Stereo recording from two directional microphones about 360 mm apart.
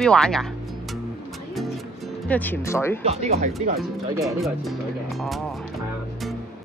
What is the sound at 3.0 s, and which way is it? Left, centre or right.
Speech, centre.